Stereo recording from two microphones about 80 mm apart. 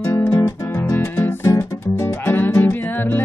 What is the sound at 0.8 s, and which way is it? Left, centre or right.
Music, left.